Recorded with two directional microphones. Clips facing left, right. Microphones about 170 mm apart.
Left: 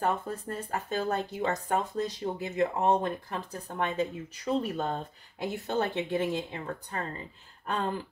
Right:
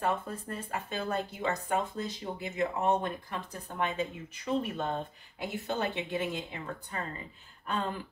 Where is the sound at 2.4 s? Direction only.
35° left (ahead or behind).